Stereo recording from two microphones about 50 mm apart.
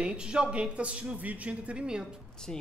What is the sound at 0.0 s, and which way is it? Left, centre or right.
A woman's voice, centre.